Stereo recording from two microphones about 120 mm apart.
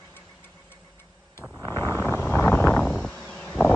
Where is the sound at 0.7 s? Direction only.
15° left (ahead or behind).